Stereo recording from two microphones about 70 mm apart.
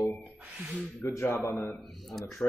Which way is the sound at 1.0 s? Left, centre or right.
Left.